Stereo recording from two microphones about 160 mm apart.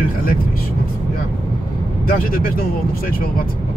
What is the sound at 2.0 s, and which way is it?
Speech, 65° left (ahead or behind).